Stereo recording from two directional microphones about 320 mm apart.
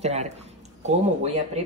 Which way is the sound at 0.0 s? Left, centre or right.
Right.